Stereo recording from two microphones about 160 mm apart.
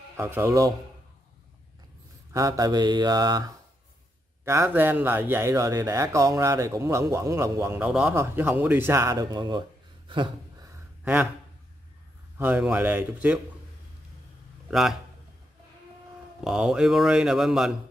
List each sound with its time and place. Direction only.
0.2 s speech: 15° right (ahead or behind)
2.3 s mantra: 20° right (ahead or behind)
4.5 s speech: 15° right (ahead or behind)
10.0 s a sound: 30° right (ahead or behind)
12.4 s speech: 10° right (ahead or behind)
14.7 s a man's voice: centre (ahead or behind)
16.4 s speech: 5° right (ahead or behind)